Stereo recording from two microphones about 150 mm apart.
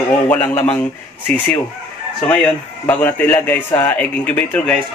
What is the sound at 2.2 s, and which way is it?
Speech, 10° left (ahead or behind).